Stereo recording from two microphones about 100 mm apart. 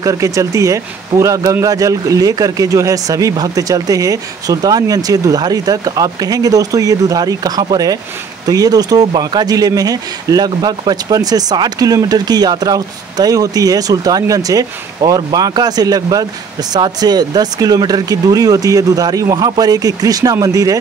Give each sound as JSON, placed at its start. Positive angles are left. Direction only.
{"t": 0.0, "sound": "speech", "side_deg": -35}